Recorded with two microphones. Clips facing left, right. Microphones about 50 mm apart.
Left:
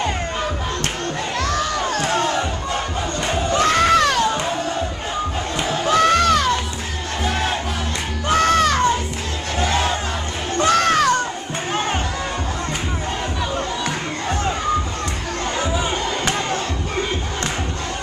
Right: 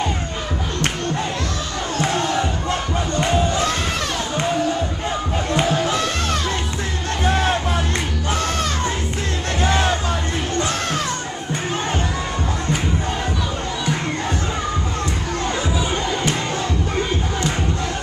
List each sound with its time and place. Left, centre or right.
3.5 s crowd: left
5.9 s music: left
8.4 s music: left
10.7 s music: left